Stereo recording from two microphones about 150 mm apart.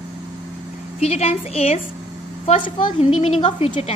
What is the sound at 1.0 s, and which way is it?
A woman's voice, 45° left (ahead or behind).